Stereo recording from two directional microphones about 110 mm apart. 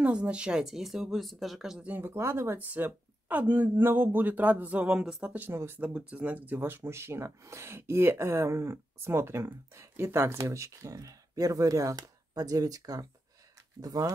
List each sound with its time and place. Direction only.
0.0 s speech: 10° right (ahead or behind); by 14.1 s 35° right (ahead or behind)